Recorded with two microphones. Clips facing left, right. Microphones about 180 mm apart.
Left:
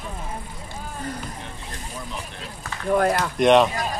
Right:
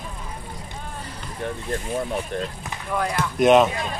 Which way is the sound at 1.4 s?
55° right (ahead or behind).